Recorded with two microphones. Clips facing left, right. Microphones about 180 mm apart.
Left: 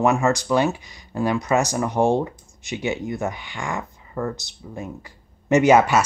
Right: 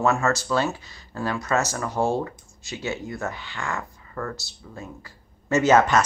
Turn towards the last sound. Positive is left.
turn(degrees=10)  # may be behind; listen again after turning